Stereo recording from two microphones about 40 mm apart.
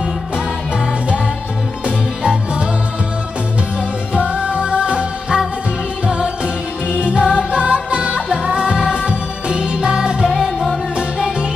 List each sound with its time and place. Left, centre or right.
1.9 s music: right
4.3 s music: right
10.3 s music: centre
11.0 s music: right